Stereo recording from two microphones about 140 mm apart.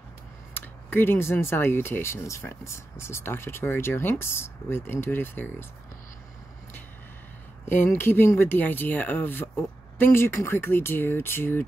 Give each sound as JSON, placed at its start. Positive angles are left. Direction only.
{"t": 0.6, "sound": "speech", "side_deg": 15}
{"t": 7.6, "sound": "speech", "side_deg": 15}